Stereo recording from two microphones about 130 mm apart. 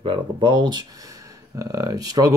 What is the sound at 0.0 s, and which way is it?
Speech, 40° right (ahead or behind).